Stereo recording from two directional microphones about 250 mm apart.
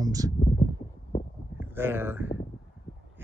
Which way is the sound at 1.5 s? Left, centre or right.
Centre.